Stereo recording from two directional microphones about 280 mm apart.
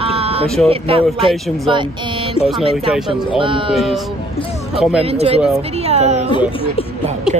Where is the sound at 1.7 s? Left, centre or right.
Centre.